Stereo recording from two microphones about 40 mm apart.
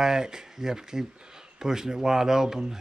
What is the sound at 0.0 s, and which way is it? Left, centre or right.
Speech, centre.